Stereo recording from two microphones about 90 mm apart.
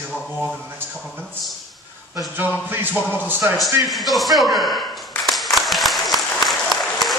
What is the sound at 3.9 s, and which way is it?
Speech, centre (ahead or behind).